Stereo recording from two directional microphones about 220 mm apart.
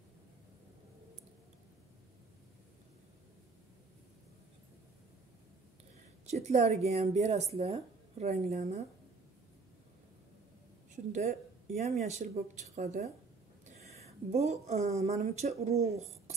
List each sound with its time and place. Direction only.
6.3 s a woman's voice: 30° right (ahead or behind)
11.1 s a woman's voice: 30° right (ahead or behind)